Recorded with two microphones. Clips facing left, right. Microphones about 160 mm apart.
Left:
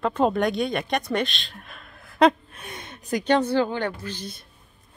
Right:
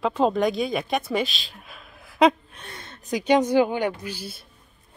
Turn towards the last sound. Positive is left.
turn(degrees=-10)  # may be behind; listen again after turning